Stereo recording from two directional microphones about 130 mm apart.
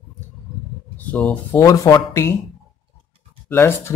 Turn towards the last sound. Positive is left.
turn(degrees=20)  # may be behind; listen again after turning